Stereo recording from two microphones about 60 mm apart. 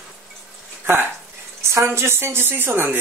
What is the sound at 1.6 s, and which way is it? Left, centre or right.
Speech, right.